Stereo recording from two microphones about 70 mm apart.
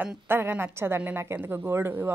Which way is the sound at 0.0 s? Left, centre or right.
Right.